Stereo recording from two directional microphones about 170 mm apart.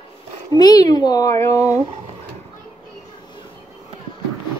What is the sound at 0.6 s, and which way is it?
A child's voice, 20° left (ahead or behind).